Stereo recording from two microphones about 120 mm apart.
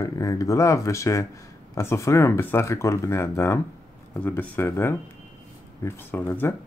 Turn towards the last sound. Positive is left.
turn(degrees=20)  # may be behind; listen again after turning